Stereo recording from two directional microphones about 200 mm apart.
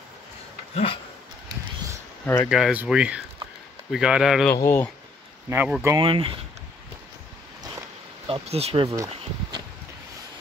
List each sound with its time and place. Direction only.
2.2 s speech: 10° left (ahead or behind)
2.5 s speech: 5° right (ahead or behind)
4.6 s speech: 10° left (ahead or behind)
5.5 s speech: 10° right (ahead or behind)
5.9 s speech: 25° right (ahead or behind)
8.3 s speech: 30° right (ahead or behind)
8.8 s speech: 15° right (ahead or behind)